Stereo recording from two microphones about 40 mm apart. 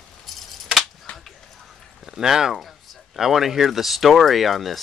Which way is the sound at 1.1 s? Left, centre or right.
Left.